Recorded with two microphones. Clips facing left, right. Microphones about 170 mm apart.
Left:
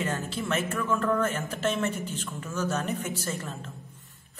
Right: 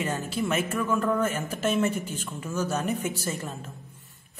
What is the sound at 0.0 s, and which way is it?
A man's voice, 15° right (ahead or behind).